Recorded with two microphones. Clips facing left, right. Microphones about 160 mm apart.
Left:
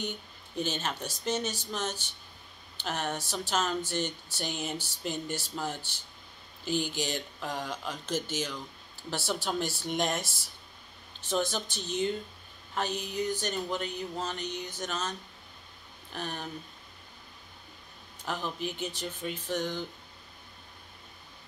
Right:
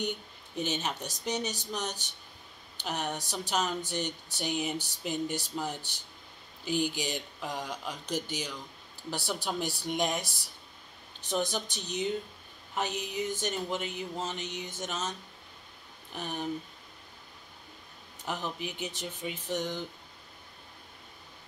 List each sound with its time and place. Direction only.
0.6 s speech: 15° right (ahead or behind)
11.1 s speech: 15° right (ahead or behind)
12.7 s a sound: 20° right (ahead or behind)
16.1 s speech: 15° right (ahead or behind)
18.2 s speech: 15° right (ahead or behind)